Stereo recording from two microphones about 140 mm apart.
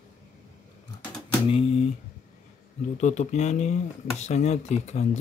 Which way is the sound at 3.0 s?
55° left (ahead or behind).